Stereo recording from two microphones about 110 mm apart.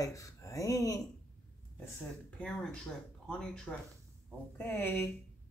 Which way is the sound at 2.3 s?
10° left (ahead or behind).